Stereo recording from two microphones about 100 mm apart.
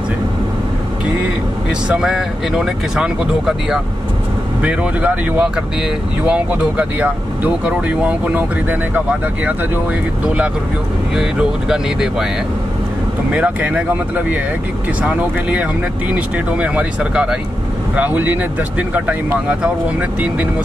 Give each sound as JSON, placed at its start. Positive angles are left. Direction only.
{"t": 1.9, "sound": "speech", "side_deg": -5}
{"t": 13.3, "sound": "speech", "side_deg": -15}
{"t": 16.1, "sound": "speech", "side_deg": -15}